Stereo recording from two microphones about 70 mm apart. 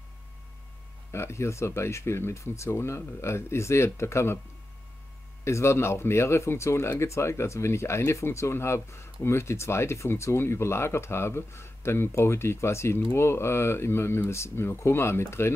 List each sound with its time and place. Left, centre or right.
1.1 s speech: left
5.4 s speech: left